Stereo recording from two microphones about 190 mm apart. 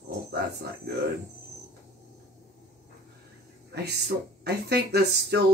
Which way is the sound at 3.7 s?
60° right (ahead or behind).